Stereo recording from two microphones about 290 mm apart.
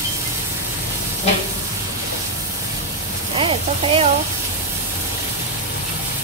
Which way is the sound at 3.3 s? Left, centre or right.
Centre.